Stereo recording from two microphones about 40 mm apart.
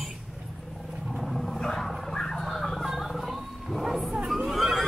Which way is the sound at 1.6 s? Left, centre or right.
Centre.